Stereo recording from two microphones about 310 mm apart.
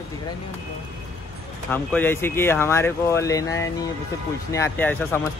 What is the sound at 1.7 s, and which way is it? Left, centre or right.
Speech, centre.